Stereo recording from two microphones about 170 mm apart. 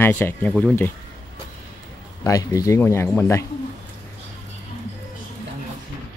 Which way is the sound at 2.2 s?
20° left (ahead or behind).